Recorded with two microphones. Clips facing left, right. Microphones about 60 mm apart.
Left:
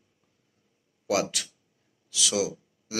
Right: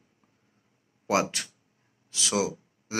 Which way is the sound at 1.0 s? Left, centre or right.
Right.